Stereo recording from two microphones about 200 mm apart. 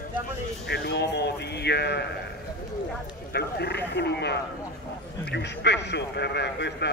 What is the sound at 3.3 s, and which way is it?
A man's voice, 55° left (ahead or behind).